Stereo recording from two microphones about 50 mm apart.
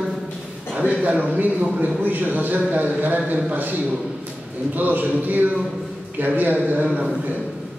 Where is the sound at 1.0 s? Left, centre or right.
Right.